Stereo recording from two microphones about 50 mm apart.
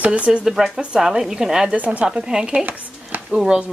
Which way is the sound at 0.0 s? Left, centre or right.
Right.